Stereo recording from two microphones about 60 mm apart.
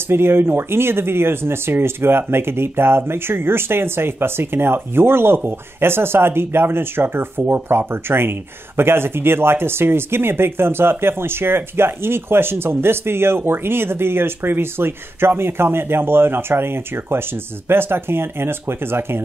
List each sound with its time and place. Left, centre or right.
0.1 s speech: right